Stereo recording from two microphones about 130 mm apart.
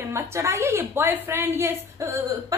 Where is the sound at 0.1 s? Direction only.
20° right (ahead or behind).